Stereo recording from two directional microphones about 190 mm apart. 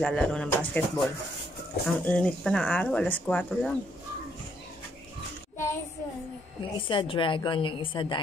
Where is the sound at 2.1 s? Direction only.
5° left (ahead or behind).